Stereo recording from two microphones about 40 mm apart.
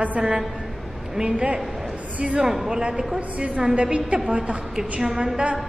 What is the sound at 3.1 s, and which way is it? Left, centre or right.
A woman's voice, right.